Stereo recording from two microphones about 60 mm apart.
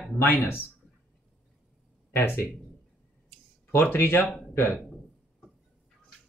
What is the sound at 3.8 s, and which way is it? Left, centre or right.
Speech, left.